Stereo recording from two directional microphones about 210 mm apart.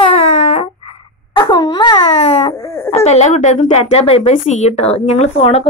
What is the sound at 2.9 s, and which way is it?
Speech, 30° left (ahead or behind).